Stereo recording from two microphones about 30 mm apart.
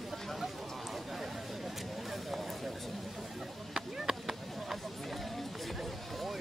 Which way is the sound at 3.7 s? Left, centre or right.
Centre.